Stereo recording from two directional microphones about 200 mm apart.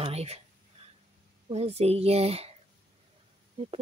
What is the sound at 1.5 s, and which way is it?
Speech, 30° right (ahead or behind).